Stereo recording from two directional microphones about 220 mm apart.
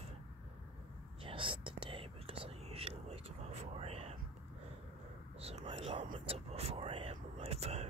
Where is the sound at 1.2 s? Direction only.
25° right (ahead or behind).